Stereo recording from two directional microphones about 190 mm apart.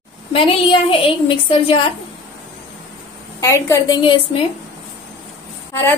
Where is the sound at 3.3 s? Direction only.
15° left (ahead or behind).